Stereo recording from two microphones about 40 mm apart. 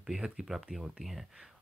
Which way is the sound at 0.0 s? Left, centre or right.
Centre.